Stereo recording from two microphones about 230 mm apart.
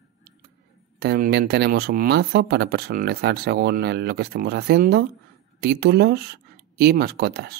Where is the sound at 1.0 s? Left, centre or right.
Right.